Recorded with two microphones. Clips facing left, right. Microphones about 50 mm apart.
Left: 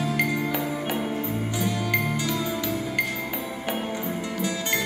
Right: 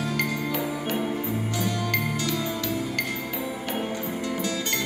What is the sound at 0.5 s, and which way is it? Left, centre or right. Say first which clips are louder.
Music: even; centre.